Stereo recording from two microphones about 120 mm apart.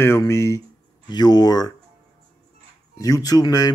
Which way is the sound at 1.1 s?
35° left (ahead or behind).